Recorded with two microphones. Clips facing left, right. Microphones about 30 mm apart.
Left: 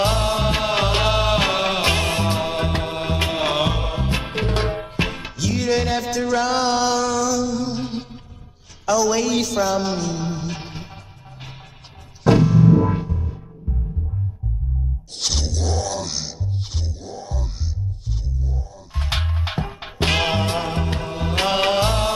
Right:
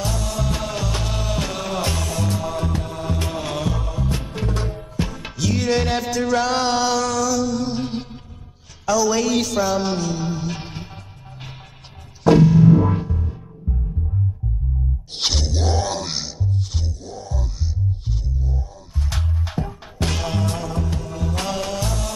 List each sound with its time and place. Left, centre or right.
0.0 s music: left
5.2 s music: centre
12.3 s music: centre
15.2 s music: right
18.9 s music: left